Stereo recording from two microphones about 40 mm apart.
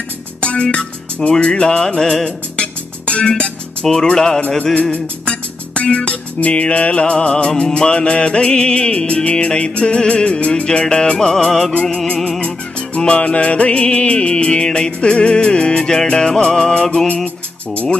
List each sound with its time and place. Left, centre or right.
0.4 s speech: left
1.5 s music: centre
2.2 s music: left
3.8 s music: centre
4.9 s music: left; by 11.7 s centre
12.4 s music: left